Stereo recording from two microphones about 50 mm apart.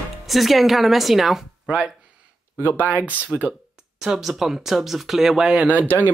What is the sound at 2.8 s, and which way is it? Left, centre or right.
Speech, right.